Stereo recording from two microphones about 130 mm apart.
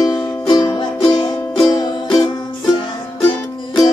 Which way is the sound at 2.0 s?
Centre (ahead or behind).